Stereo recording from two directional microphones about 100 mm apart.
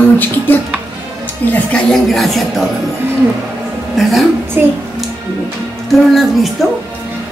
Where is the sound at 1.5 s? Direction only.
10° left (ahead or behind).